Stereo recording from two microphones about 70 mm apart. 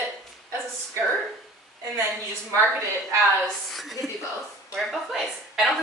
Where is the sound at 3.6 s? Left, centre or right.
Centre.